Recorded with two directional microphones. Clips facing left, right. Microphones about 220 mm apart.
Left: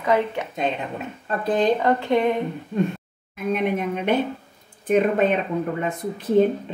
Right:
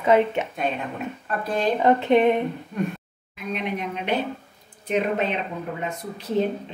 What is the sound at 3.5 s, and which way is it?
A woman's voice, 50° left (ahead or behind).